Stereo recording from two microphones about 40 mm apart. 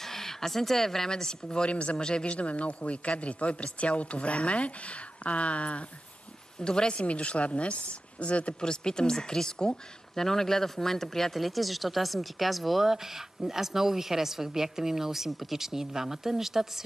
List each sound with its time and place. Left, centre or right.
0.0 s speech: centre
1.7 s speech: left
2.3 s a woman's voice: left
6.6 s a woman's voice: left
8.5 s speech: centre